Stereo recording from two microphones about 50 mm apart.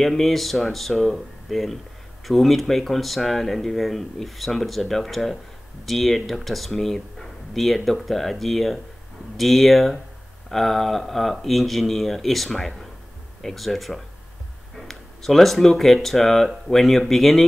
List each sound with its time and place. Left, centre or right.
0.0 s speech: centre